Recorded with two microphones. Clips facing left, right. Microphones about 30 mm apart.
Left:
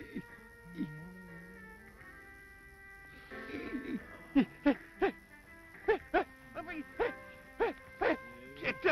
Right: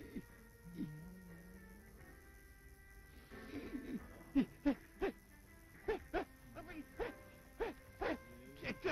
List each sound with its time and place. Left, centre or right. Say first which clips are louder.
0.0 s music: left 6 dB; left
3.3 s hoot: left 7 dB; left
5.9 s music: left 10 dB; left